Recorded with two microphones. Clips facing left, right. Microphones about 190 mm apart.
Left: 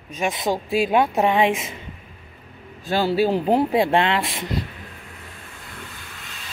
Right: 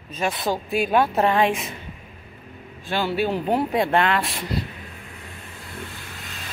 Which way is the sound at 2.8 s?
35° left (ahead or behind).